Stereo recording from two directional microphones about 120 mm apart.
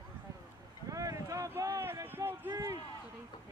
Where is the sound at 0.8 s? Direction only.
30° right (ahead or behind).